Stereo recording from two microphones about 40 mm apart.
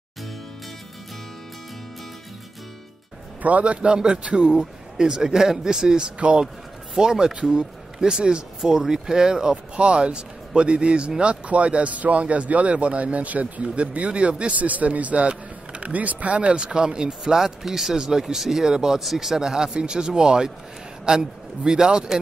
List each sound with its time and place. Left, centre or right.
3.4 s a man's voice: right; by 6.1 s centre
6.1 s a man's voice: right
7.0 s speech: centre
9.8 s speech: right
16.5 s a man's voice: right
17.2 s a man's voice: centre